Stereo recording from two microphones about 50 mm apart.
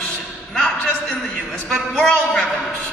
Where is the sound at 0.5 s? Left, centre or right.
Centre.